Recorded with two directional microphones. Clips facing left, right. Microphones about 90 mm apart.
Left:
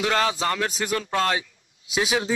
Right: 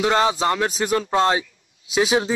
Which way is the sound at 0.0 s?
20° right (ahead or behind).